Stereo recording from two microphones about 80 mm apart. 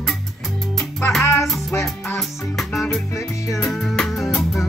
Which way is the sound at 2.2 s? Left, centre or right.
Centre.